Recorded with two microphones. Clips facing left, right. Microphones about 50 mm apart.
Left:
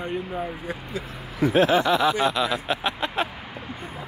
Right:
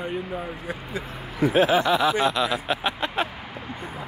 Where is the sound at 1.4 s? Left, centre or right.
Centre.